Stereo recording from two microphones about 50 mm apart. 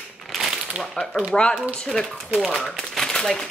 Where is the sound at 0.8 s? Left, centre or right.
Right.